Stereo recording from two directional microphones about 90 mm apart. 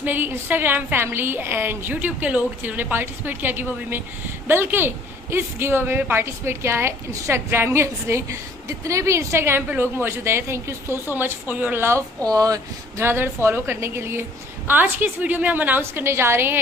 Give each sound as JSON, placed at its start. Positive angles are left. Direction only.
{"t": 0.0, "sound": "a woman's voice", "side_deg": -20}
{"t": 12.3, "sound": "speech", "side_deg": -40}
{"t": 13.0, "sound": "a woman's voice", "side_deg": -25}